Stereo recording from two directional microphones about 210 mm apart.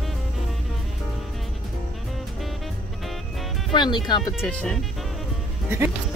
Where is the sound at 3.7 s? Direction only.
20° left (ahead or behind).